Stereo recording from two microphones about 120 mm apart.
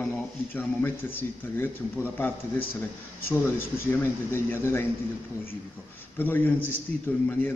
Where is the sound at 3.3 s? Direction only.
20° left (ahead or behind).